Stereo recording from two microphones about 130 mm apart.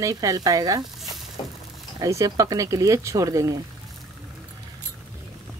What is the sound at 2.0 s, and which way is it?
Speech, 25° right (ahead or behind).